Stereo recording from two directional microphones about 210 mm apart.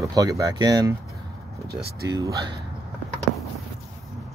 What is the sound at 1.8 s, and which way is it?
Speech, 50° right (ahead or behind).